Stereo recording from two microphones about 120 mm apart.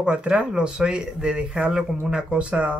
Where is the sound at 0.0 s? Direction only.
10° right (ahead or behind).